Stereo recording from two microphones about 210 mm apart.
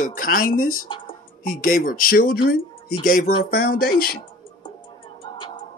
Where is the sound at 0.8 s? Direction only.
25° left (ahead or behind).